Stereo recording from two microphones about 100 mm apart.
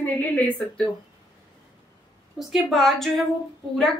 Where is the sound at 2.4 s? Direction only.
5° right (ahead or behind).